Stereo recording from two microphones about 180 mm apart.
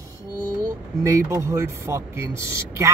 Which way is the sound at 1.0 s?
15° right (ahead or behind).